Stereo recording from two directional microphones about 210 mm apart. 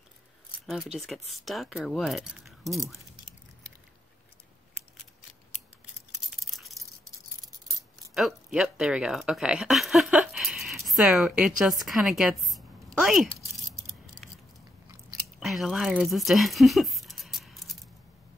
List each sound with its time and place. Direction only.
0.9 s speech: centre (ahead or behind)
6.1 s a sound: centre (ahead or behind)
8.1 s speech: centre (ahead or behind)
15.3 s speech: centre (ahead or behind)